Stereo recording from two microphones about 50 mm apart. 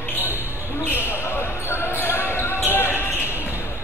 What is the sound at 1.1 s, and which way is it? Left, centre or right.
Basketball bounce, left.